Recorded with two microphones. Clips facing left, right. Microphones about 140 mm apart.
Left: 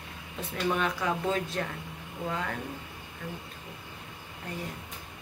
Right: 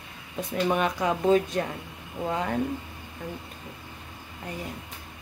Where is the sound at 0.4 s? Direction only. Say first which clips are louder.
Right 4 dB; 15° right (ahead or behind).